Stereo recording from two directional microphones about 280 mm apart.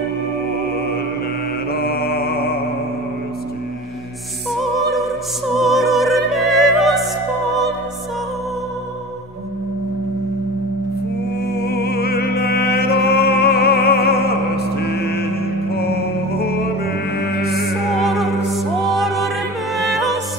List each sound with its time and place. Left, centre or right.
1.7 s mantra: left
4.5 s music: centre
11.5 s music: left
18.0 s music: centre